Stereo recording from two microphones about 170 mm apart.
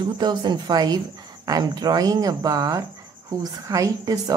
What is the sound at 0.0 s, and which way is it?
A woman's voice, 25° right (ahead or behind).